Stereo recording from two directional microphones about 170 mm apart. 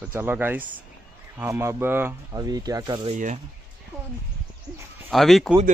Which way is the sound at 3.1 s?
45° right (ahead or behind).